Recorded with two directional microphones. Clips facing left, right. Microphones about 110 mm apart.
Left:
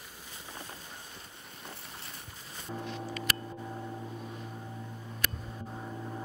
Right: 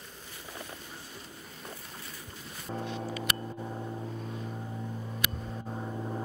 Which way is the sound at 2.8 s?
20° right (ahead or behind).